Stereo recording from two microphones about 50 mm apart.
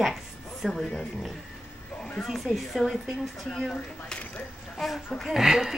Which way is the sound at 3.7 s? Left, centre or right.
Centre.